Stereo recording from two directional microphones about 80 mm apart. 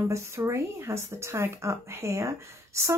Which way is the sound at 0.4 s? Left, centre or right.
Right.